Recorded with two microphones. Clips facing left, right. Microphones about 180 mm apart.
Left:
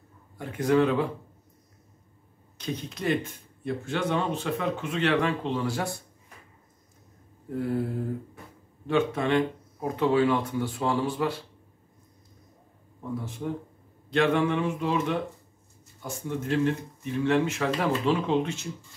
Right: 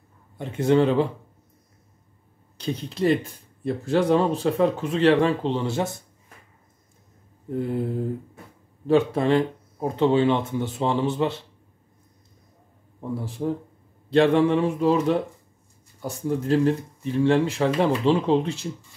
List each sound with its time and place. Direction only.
0.4 s speech: 25° right (ahead or behind)
2.5 s speech: 30° right (ahead or behind)
7.4 s speech: 20° right (ahead or behind)
8.8 s speech: 35° right (ahead or behind)
14.1 s speech: 30° right (ahead or behind)